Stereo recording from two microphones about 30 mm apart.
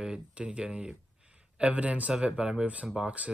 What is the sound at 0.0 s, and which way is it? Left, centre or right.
Speech, right.